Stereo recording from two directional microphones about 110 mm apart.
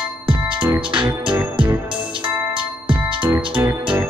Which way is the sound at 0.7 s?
50° right (ahead or behind).